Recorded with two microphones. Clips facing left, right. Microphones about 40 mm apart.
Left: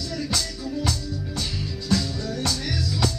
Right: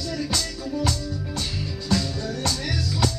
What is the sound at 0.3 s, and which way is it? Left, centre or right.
Music, right.